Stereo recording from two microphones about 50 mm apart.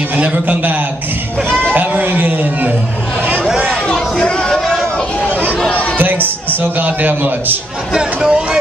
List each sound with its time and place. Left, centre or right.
0.2 s a man's voice: right
1.7 s a sound: right
3.6 s chatter: centre
6.6 s a man's voice: right
7.9 s speech: centre